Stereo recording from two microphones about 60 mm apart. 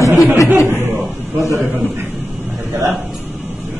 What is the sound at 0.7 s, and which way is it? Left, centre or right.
Chuckle, right.